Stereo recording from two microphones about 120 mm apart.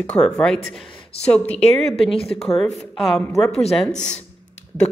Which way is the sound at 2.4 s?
Centre (ahead or behind).